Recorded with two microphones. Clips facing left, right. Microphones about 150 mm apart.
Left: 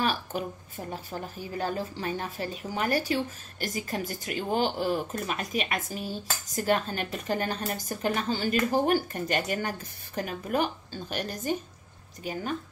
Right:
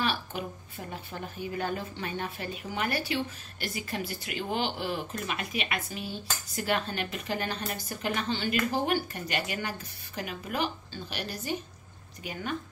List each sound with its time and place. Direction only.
0.0 s a woman's voice: 45° left (ahead or behind)